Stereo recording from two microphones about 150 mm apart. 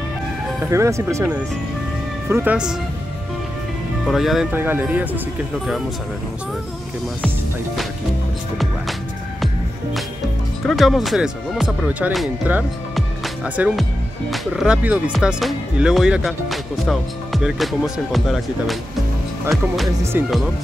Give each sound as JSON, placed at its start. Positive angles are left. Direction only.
{"t": 0.7, "sound": "speech", "side_deg": -20}
{"t": 2.2, "sound": "speech", "side_deg": -15}
{"t": 4.0, "sound": "speech", "side_deg": 0}
{"t": 4.6, "sound": "speech", "side_deg": -15}
{"t": 10.7, "sound": "speech", "side_deg": 0}
{"t": 12.9, "sound": "music", "side_deg": -5}
{"t": 14.3, "sound": "speech", "side_deg": 0}
{"t": 20.1, "sound": "speech", "side_deg": -15}